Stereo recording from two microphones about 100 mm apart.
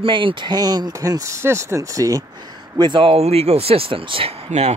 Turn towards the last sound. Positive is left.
turn(degrees=-90)